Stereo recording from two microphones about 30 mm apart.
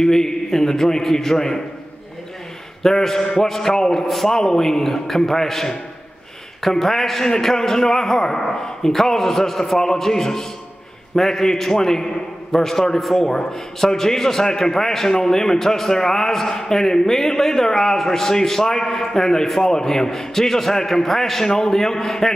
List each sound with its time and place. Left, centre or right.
0.0 s a man's voice: centre
2.8 s a man's voice: centre